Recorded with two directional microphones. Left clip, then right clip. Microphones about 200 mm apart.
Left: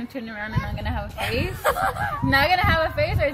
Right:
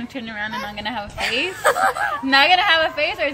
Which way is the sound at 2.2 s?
10° left (ahead or behind).